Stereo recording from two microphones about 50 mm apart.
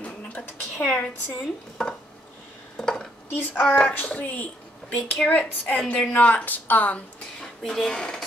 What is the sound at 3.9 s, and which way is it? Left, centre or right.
A woman's voice, left.